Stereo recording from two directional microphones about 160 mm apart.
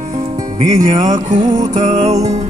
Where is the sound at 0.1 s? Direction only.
45° right (ahead or behind).